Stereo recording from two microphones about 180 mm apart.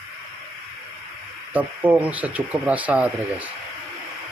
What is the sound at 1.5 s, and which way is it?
Speech, 10° right (ahead or behind).